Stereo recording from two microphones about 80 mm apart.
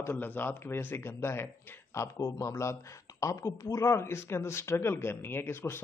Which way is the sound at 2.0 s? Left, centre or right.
Left.